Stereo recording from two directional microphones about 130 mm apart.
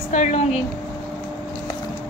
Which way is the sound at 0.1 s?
65° left (ahead or behind).